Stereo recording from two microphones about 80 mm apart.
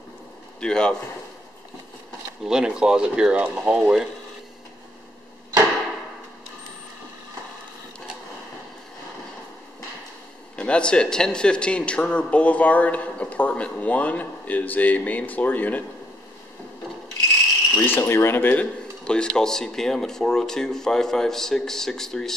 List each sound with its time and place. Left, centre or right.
0.6 s a man's voice: centre
2.4 s speech: centre
10.5 s a man's voice: centre
17.7 s speech: left
19.0 s speech: centre